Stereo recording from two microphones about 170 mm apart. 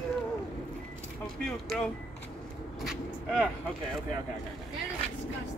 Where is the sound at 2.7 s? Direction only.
Centre (ahead or behind).